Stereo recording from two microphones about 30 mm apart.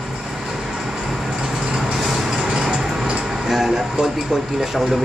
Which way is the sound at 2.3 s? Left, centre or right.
Right.